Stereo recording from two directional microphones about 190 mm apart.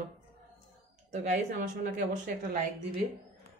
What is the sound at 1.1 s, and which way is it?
A woman's voice, 40° right (ahead or behind).